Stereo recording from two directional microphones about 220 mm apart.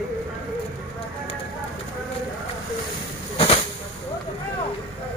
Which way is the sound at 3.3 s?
25° left (ahead or behind).